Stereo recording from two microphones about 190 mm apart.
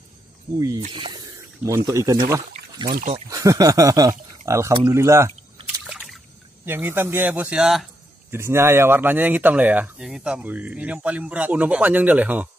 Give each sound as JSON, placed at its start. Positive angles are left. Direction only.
{"t": 0.6, "sound": "speech", "side_deg": -20}
{"t": 5.9, "sound": "trickle", "side_deg": 0}
{"t": 6.6, "sound": "speech", "side_deg": -10}